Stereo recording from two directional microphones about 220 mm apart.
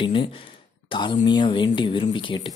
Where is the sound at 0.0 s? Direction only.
20° left (ahead or behind).